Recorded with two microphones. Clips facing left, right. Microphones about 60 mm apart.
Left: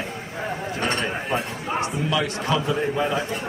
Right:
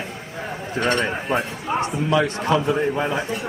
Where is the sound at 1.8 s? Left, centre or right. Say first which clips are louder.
Right 4 dB; right.